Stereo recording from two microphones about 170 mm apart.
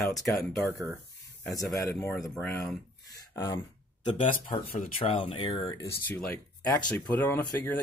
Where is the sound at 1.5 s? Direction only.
15° left (ahead or behind).